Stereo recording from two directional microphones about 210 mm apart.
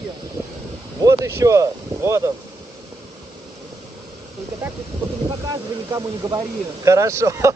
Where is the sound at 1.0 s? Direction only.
15° right (ahead or behind).